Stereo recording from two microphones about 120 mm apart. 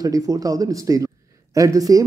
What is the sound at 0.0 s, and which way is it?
Speech, 30° right (ahead or behind).